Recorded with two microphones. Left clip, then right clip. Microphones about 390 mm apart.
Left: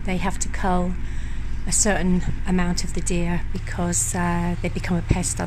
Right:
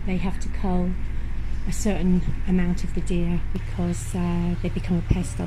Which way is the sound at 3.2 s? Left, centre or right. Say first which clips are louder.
Left 3 dB; left.